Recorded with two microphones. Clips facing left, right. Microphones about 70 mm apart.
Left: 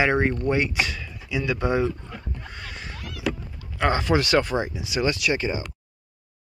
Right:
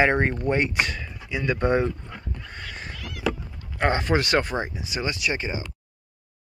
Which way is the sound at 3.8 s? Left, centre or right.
Right.